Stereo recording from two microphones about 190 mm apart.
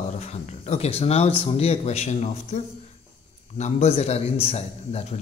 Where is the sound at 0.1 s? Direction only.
35° left (ahead or behind).